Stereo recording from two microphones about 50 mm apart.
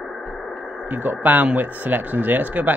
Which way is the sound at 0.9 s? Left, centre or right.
Right.